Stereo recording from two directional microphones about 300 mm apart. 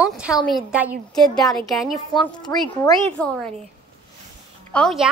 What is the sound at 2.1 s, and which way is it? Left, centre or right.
Speech, centre.